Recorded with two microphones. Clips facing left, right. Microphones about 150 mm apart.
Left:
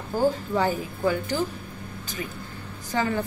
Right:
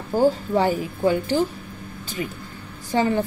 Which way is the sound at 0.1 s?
15° right (ahead or behind).